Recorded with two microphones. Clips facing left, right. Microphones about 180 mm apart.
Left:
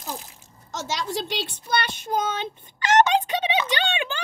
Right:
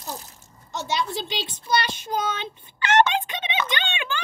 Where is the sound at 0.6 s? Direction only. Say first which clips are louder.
Right 2 dB; 85° left; by 4.2 s 40° left (ahead or behind).